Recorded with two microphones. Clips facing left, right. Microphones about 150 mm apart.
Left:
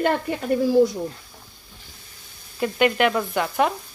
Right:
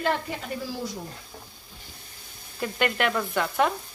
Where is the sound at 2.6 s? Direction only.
5° left (ahead or behind).